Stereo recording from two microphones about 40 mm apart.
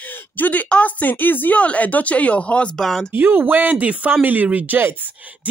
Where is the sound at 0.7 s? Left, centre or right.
Left.